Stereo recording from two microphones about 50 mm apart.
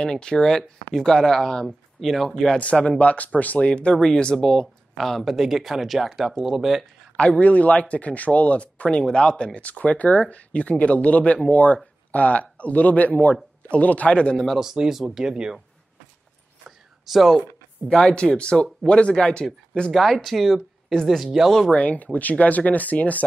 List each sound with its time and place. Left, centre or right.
0.0 s speech: centre
2.6 s speech: left; by 6.8 s centre
7.2 s speech: left
9.6 s speech: left
14.6 s speech: centre
16.6 s a sound: centre
17.8 s speech: centre
19.9 s speech: centre
21.7 s speech: left